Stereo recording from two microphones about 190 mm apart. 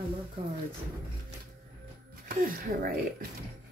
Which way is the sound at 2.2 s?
50° right (ahead or behind).